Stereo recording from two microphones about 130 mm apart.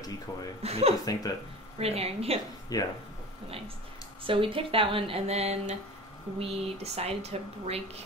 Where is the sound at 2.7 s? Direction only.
30° left (ahead or behind).